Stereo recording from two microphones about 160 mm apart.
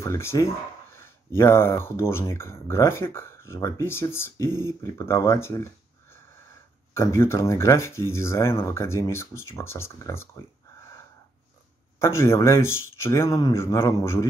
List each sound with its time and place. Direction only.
0.0 s speech: 15° left (ahead or behind)
6.9 s speech: 15° left (ahead or behind)
12.0 s speech: 15° left (ahead or behind)